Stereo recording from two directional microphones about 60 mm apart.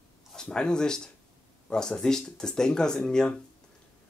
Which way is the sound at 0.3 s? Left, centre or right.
Centre.